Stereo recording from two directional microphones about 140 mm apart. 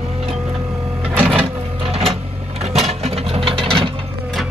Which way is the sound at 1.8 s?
45° right (ahead or behind).